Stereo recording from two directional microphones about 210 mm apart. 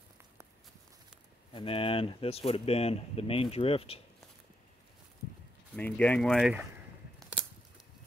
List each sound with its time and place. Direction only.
1.5 s speech: 25° left (ahead or behind)
5.8 s speech: 5° left (ahead or behind)
7.2 s a sound: centre (ahead or behind)